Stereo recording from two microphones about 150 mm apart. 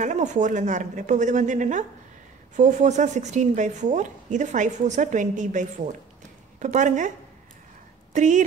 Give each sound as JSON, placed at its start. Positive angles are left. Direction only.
{"t": 0.0, "sound": "a woman's voice", "side_deg": -55}
{"t": 8.1, "sound": "speech", "side_deg": -55}